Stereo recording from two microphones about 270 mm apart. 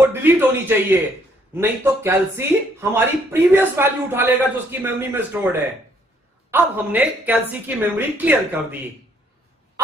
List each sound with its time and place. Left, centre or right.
0.0 s speech: centre
6.5 s speech: centre